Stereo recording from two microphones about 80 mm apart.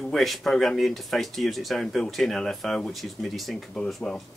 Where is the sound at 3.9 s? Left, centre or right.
Centre.